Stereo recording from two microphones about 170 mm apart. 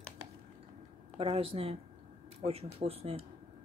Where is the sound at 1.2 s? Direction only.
35° right (ahead or behind).